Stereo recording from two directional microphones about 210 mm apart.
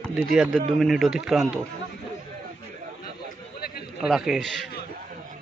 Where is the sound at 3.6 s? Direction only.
50° left (ahead or behind).